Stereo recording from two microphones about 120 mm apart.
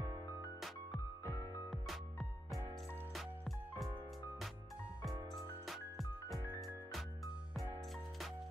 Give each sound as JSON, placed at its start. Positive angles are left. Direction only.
{"t": 0.6, "sound": "music", "side_deg": 0}
{"t": 1.2, "sound": "music", "side_deg": 20}
{"t": 1.7, "sound": "music", "side_deg": 0}
{"t": 5.3, "sound": "music", "side_deg": 0}